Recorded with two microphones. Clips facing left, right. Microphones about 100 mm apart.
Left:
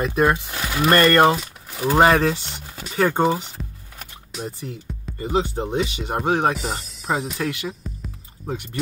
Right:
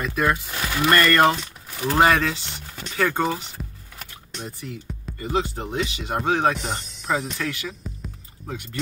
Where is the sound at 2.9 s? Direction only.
30° left (ahead or behind).